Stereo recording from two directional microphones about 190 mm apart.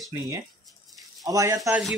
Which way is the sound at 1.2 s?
15° right (ahead or behind).